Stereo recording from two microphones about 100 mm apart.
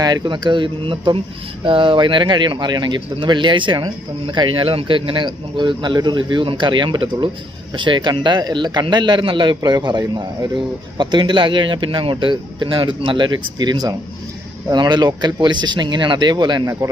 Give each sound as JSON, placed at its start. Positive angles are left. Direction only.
{"t": 0.0, "sound": "speech", "side_deg": -45}